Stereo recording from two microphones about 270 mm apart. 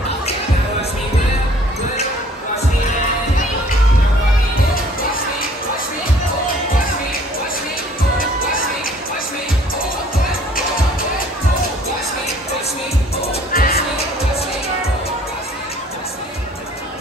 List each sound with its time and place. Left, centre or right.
13.5 s music: left